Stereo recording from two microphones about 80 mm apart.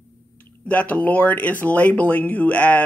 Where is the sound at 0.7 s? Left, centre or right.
Centre.